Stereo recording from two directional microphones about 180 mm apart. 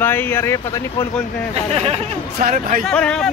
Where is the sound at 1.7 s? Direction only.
35° right (ahead or behind).